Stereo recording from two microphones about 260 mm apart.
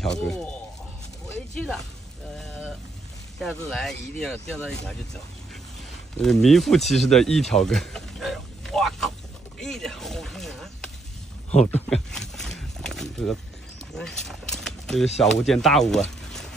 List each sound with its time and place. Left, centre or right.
0.0 s speech: centre
1.5 s speech: centre
2.3 s a sound: centre
3.3 s speech: centre
6.2 s speech: centre
9.6 s a sound: centre
11.5 s speech: left
11.9 s a sound: centre
15.1 s speech: centre